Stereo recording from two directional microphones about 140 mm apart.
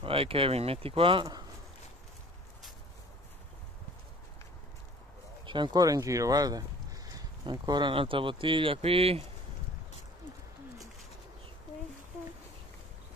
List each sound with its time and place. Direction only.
0.0 s speech: 40° right (ahead or behind)
5.4 s speech: 35° right (ahead or behind)